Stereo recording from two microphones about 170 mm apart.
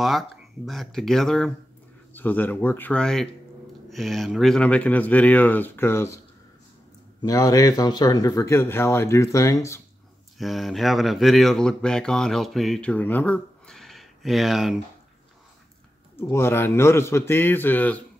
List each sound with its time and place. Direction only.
0.7 s speech: centre (ahead or behind)
7.2 s speech: 20° left (ahead or behind)
10.3 s speech: centre (ahead or behind)
16.2 s speech: 15° left (ahead or behind)